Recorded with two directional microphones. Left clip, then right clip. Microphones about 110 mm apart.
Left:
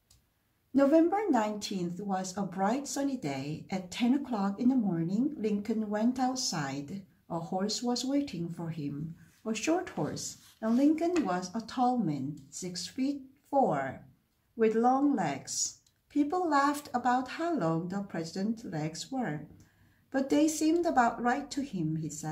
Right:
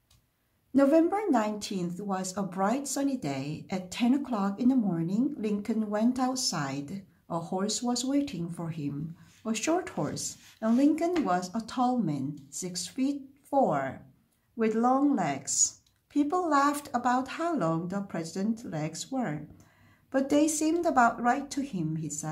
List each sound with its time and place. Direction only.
0.7 s speech: 30° right (ahead or behind)
20.1 s speech: 40° right (ahead or behind)